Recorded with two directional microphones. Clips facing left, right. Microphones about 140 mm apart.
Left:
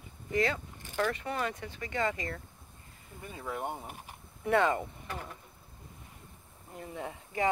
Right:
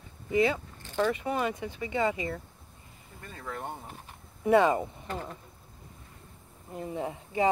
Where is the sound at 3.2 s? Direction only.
10° left (ahead or behind).